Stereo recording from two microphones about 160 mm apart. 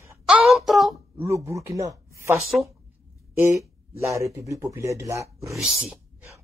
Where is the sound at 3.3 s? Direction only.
15° right (ahead or behind).